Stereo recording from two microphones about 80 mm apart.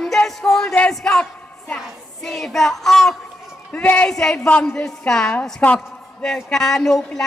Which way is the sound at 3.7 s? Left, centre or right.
Centre.